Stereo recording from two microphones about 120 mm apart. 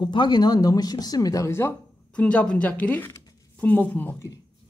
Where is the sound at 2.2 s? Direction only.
10° left (ahead or behind).